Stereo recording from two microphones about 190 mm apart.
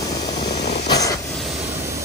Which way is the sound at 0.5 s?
40° left (ahead or behind).